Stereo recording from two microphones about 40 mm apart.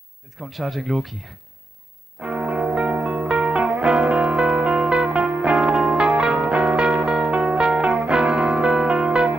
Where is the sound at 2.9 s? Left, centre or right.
Right.